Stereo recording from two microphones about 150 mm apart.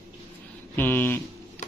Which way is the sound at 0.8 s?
15° left (ahead or behind).